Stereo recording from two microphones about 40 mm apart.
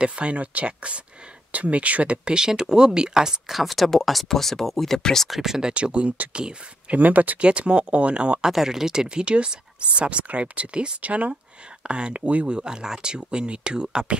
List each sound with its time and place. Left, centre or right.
0.0 s speech: right; by 5.3 s centre
5.3 s speech: centre
5.7 s speech: right
7.0 s speech: right
7.3 s speech: right
8.5 s speech: centre; by 12.5 s right
12.5 s speech: centre